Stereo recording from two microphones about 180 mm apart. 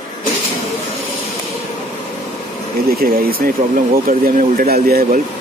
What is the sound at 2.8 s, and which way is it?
Speech, 55° right (ahead or behind).